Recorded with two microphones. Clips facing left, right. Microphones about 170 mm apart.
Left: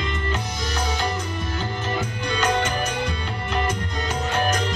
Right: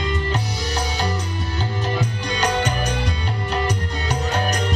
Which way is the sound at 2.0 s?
35° right (ahead or behind).